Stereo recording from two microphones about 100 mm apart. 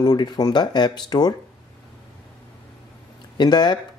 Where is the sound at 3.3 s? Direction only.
45° left (ahead or behind).